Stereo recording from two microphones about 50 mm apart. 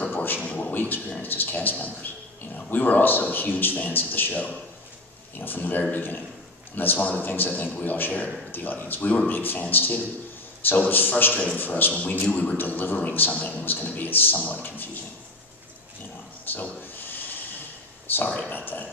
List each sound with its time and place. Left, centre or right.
0.0 s a sound: left
0.5 s a sound: left
0.7 s a man's voice: left
9.4 s a man's voice: left
12.5 s a man's voice: left
16.5 s a man's voice: left
17.0 s hiss: left
18.0 s speech: left